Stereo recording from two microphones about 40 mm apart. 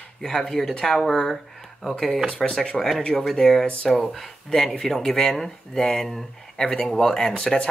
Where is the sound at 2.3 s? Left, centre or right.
Left.